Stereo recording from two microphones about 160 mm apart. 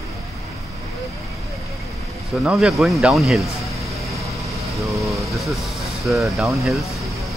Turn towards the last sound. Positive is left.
turn(degrees=0)  # may be behind; listen again after turning